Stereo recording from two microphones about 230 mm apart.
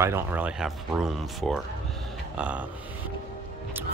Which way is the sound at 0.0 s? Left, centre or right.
Centre.